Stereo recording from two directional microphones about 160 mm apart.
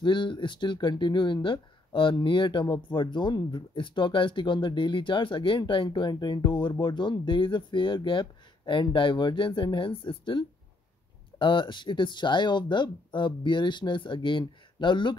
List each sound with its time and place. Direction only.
0.0 s speech: 30° left (ahead or behind)